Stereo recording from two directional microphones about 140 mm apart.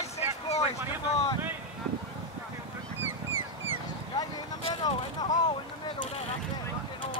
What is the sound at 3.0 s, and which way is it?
Honk, 15° right (ahead or behind).